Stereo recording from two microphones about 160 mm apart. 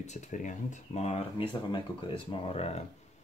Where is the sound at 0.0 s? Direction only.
45° left (ahead or behind).